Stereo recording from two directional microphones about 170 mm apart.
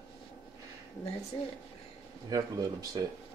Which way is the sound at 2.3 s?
20° right (ahead or behind).